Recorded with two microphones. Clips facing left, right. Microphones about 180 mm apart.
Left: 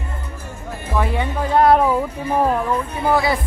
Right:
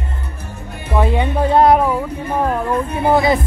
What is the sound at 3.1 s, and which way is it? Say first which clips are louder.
Music: right 4 dB; 20° right (ahead or behind).